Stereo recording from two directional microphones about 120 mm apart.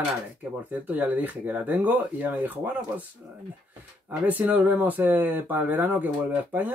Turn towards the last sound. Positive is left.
turn(degrees=-15)  # may be behind; listen again after turning